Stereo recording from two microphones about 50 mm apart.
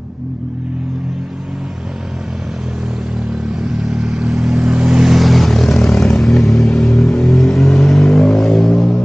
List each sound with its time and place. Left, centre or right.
3.6 s vehicle: centre
5.1 s vehicle: centre